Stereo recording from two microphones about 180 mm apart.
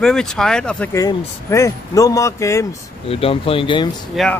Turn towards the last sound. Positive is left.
turn(degrees=0)  # may be behind; listen again after turning